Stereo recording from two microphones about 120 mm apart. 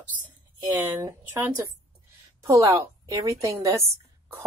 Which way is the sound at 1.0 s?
20° right (ahead or behind).